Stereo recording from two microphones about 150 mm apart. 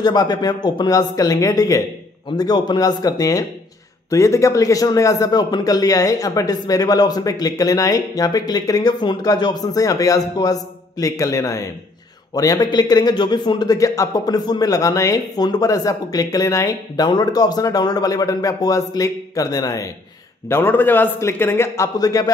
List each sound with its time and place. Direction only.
0.0 s a man's voice: 25° left (ahead or behind)